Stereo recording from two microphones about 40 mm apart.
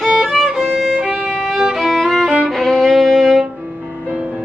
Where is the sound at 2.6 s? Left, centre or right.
Centre.